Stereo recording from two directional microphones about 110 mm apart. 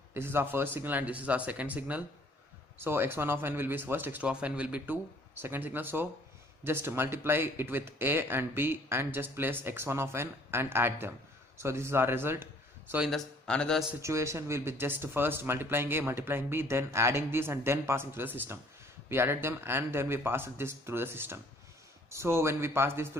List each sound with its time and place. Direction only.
0.1 s speech: 20° right (ahead or behind)
13.5 s speech: 10° left (ahead or behind)
14.0 s speech: 25° right (ahead or behind)